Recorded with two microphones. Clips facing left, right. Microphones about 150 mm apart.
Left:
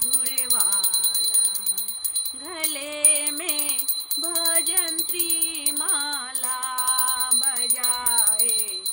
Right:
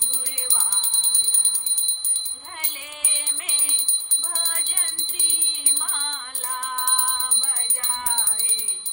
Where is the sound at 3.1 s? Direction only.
90° left.